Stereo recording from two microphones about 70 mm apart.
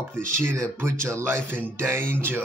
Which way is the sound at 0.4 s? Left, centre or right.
Right.